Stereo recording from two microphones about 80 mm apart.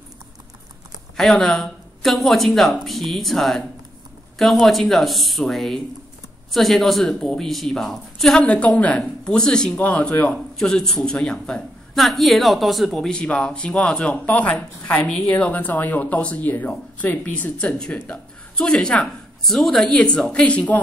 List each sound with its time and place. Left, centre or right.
1.1 s a woman's voice: centre
10.6 s a woman's voice: centre
15.0 s speech: centre
18.6 s a woman's voice: centre